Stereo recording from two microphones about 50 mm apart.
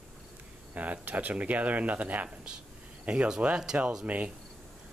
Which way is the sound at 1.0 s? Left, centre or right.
Right.